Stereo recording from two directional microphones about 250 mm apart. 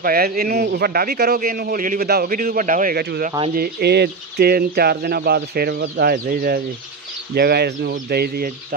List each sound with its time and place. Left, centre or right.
0.0 s a man's voice: right